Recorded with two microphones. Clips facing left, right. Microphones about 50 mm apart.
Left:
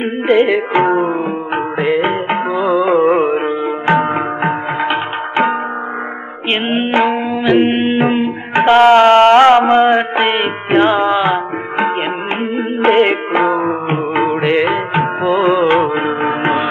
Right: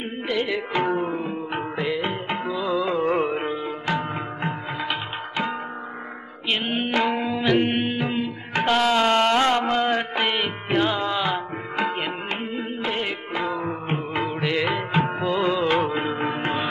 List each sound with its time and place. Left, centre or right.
0.3 s music: left
6.5 s music: left
12.8 s music: left